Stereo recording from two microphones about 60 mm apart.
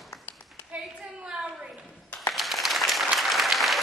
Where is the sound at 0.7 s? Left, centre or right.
Centre.